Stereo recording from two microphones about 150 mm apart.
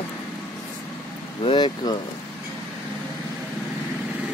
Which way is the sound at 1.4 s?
30° left (ahead or behind).